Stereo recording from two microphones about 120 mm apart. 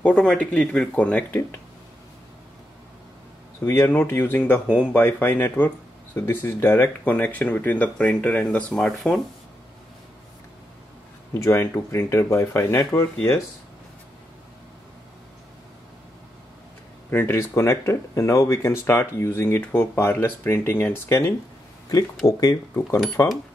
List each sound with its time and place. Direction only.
0.0 s speech: 10° left (ahead or behind)
3.6 s speech: 20° left (ahead or behind); by 9.2 s 5° left (ahead or behind)
11.3 s speech: 25° left (ahead or behind)
17.1 s speech: 20° left (ahead or behind)
22.4 s speech: 25° left (ahead or behind)